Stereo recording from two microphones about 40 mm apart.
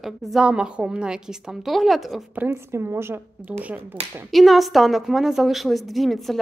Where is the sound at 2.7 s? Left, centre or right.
Right.